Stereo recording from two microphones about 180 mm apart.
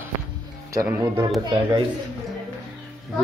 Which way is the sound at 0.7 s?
15° right (ahead or behind).